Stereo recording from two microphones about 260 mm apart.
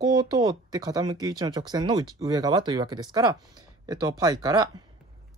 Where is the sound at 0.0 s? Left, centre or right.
Centre.